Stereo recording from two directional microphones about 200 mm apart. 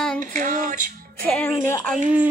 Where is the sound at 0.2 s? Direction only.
40° right (ahead or behind).